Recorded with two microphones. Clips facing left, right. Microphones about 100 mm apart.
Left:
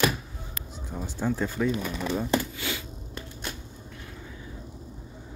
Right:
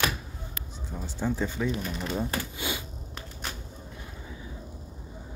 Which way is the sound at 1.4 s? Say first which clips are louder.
Left 5 dB; 5° left (ahead or behind).